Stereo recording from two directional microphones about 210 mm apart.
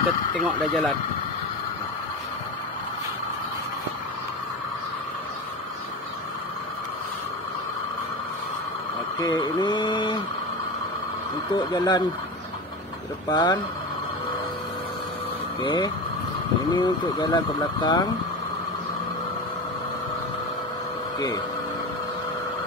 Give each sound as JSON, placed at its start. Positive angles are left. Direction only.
{"t": 0.4, "sound": "speech", "side_deg": 0}
{"t": 9.2, "sound": "speech", "side_deg": 20}
{"t": 11.5, "sound": "speech", "side_deg": 20}
{"t": 13.3, "sound": "speech", "side_deg": 20}
{"t": 15.6, "sound": "speech", "side_deg": 20}